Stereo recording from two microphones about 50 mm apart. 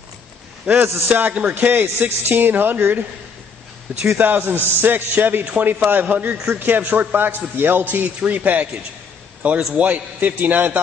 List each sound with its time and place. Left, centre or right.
1.0 s a man's voice: right
4.2 s a man's voice: right